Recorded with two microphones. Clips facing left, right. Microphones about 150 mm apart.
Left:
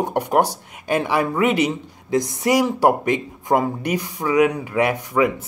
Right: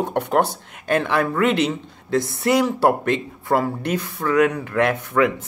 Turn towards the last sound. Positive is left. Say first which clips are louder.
# even
turn(degrees=10)  # may be behind; listen again after turning